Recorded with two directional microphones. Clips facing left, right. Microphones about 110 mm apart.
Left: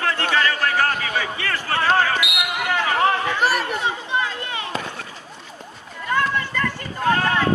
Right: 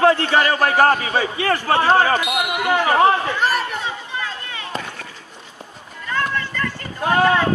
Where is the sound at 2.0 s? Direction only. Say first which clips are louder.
Right 4 dB; 40° right (ahead or behind).